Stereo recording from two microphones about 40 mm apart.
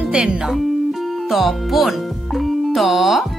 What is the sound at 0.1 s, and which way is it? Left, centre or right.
Speech, right.